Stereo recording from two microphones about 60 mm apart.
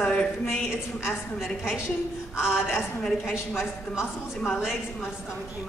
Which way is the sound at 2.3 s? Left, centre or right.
Centre.